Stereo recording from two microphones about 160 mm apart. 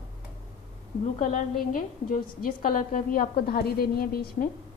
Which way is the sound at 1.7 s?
60° left (ahead or behind).